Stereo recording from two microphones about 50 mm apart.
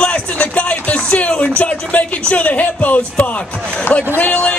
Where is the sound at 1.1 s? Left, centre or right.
Left.